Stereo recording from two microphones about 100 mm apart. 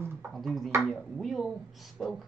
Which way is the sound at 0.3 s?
Centre (ahead or behind).